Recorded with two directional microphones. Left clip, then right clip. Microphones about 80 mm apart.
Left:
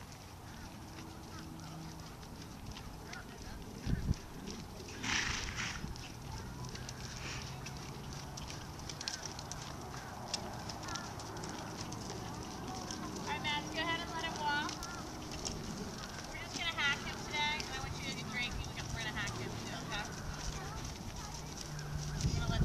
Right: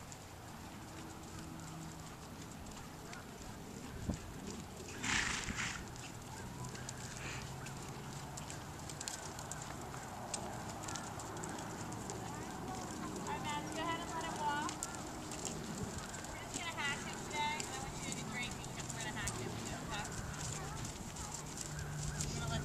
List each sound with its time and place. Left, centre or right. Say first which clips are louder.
5.0 s horse: left 1 dB; centre
13.3 s vehicle: left 5 dB; left
13.7 s clip-clop: left 3 dB; left
16.5 s clip-clop: left 6 dB; left
17.7 s vehicle: left 2 dB; left
21.7 s fowl: even; centre